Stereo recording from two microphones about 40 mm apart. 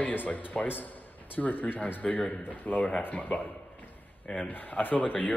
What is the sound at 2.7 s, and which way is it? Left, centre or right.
A man's voice, left.